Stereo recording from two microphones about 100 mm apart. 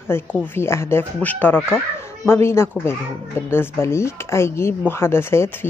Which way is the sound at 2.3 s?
25° left (ahead or behind).